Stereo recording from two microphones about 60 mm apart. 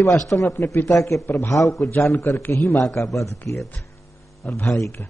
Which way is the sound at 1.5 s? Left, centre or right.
Left.